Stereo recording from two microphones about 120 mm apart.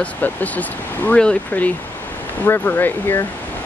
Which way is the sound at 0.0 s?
15° left (ahead or behind).